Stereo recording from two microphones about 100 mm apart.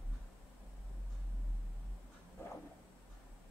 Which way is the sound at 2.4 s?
25° left (ahead or behind).